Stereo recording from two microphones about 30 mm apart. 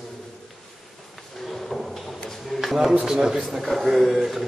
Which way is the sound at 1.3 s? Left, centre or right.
Centre.